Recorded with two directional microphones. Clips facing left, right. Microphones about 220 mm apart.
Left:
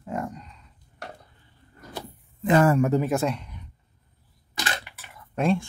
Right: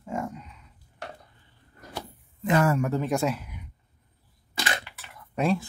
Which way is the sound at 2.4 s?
30° left (ahead or behind).